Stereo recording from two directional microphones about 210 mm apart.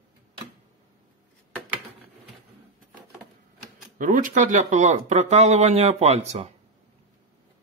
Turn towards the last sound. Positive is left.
turn(degrees=-30)  # may be behind; listen again after turning